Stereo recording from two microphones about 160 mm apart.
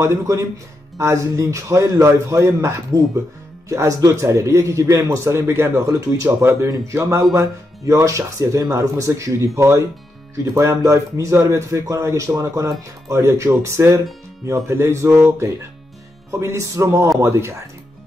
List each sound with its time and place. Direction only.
0.0 s speech: 20° right (ahead or behind)